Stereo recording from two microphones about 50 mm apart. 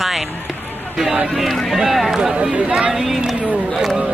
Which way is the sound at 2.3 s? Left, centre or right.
Right.